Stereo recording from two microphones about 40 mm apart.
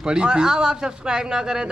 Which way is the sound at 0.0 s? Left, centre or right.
Right.